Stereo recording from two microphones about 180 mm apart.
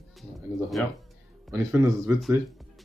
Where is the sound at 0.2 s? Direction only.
Centre (ahead or behind).